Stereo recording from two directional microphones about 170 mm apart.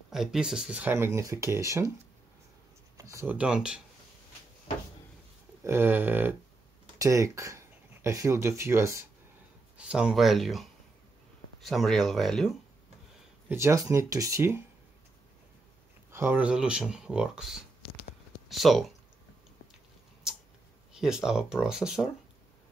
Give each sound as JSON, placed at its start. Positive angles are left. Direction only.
{"t": 0.1, "sound": "speech", "side_deg": 0}
{"t": 3.0, "sound": "speech", "side_deg": -15}
{"t": 5.6, "sound": "speech", "side_deg": -15}
{"t": 9.8, "sound": "speech", "side_deg": -5}
{"t": 13.5, "sound": "speech", "side_deg": -15}
{"t": 16.1, "sound": "speech", "side_deg": -10}
{"t": 20.3, "sound": "a sound", "side_deg": -5}
{"t": 21.0, "sound": "speech", "side_deg": -5}